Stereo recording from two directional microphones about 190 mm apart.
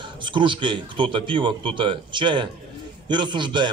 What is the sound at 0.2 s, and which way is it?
A man's voice, 25° right (ahead or behind).